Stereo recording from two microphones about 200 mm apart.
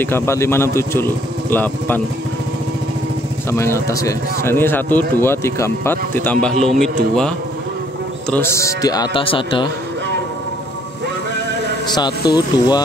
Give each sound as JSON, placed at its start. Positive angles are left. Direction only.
{"t": 0.0, "sound": "a man's voice", "side_deg": 10}
{"t": 3.4, "sound": "a man's voice", "side_deg": 15}
{"t": 12.3, "sound": "a man's voice", "side_deg": 20}